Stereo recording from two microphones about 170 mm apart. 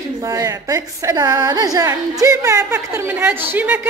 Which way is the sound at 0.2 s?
20° right (ahead or behind).